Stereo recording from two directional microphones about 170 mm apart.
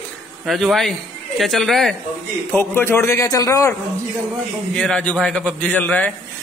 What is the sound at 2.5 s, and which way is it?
A man's voice, 15° left (ahead or behind).